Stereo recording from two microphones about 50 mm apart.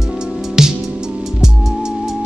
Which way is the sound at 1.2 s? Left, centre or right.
Centre.